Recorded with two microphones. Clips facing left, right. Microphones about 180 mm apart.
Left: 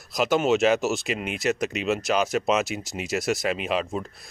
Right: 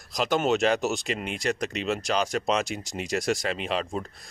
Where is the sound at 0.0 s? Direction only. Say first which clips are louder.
Left 3 dB; 5° left (ahead or behind).